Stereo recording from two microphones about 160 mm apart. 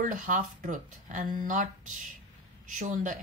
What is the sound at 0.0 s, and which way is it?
Speech, 55° right (ahead or behind).